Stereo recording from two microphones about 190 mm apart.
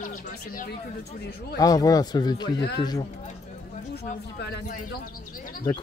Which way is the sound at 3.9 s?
60° left (ahead or behind).